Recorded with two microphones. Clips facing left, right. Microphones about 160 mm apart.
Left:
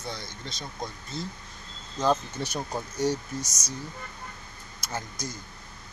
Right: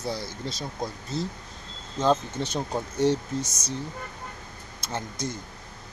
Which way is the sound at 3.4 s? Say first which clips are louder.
Right 4 dB; 55° right (ahead or behind).